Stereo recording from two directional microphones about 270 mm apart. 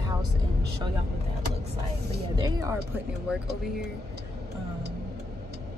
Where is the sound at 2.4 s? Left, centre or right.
Centre.